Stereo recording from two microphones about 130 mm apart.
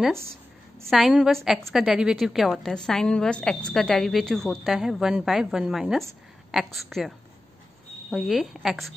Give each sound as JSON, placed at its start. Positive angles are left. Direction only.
{"t": 0.8, "sound": "a woman's voice", "side_deg": 0}